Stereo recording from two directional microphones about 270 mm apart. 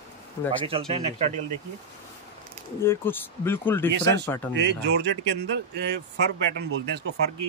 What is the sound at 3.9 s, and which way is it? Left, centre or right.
Speech, right.